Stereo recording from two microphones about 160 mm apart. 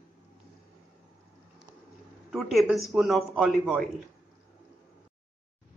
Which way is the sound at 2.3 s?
Centre (ahead or behind).